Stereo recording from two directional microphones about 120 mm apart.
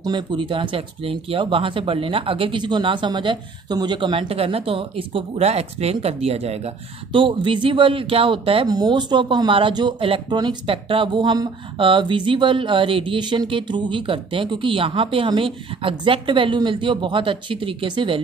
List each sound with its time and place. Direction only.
0.0 s speech: 35° right (ahead or behind); by 7.2 s 60° right (ahead or behind)
7.2 s speech: 45° right (ahead or behind)
8.6 s speech: 35° right (ahead or behind)
10.3 s speech: 35° right (ahead or behind)